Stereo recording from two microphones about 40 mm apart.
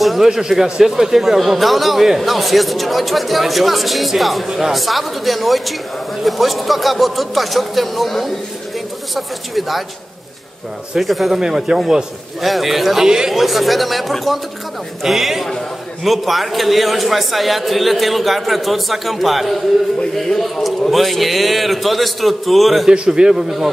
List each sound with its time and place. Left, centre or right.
0.0 s a man's voice: centre
0.3 s a man's voice: centre
11.0 s a man's voice: centre
11.3 s speech: centre
12.4 s a man's voice: centre
13.0 s speech: centre
13.3 s a man's voice: centre
22.8 s a man's voice: centre